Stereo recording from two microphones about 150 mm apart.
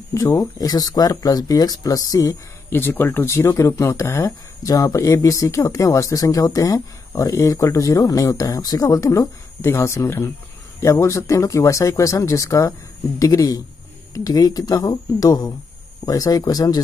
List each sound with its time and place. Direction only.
0.1 s speech: 20° left (ahead or behind)